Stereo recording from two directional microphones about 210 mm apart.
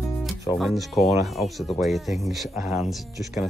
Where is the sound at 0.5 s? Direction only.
Centre (ahead or behind).